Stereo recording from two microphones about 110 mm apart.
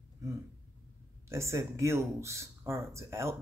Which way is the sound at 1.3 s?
25° right (ahead or behind).